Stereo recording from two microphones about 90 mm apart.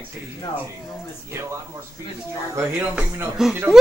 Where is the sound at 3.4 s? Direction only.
5° right (ahead or behind).